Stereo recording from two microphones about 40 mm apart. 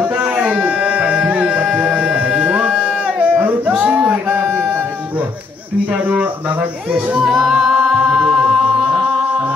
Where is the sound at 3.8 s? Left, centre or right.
Right.